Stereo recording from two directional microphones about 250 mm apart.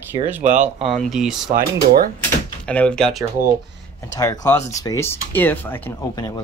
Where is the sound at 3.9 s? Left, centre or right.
Centre.